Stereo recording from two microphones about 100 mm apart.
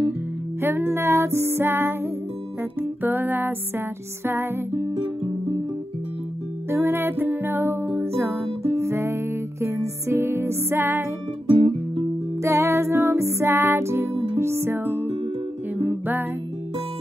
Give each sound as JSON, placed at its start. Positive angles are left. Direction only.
{"t": 0.6, "sound": "music", "side_deg": -25}
{"t": 6.7, "sound": "music", "side_deg": -25}
{"t": 11.4, "sound": "music", "side_deg": -70}
{"t": 12.4, "sound": "music", "side_deg": -25}